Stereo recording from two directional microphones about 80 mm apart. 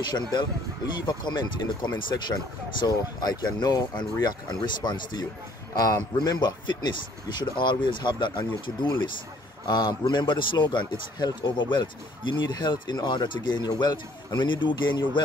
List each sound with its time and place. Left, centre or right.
1.0 s speech: left
5.8 s a man's voice: left
9.7 s a man's voice: left